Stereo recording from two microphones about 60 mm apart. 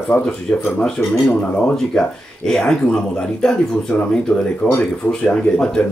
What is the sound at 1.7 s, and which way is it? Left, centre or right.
Speech, centre.